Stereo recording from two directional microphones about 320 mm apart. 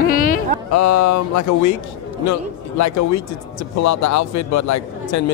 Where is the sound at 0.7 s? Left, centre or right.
Left.